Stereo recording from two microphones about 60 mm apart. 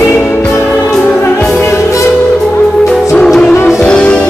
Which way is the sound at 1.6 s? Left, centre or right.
Left.